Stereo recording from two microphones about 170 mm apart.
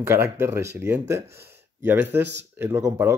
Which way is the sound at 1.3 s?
70° right (ahead or behind).